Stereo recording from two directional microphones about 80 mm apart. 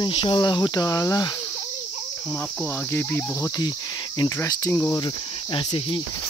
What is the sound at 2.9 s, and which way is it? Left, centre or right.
Cricket, left.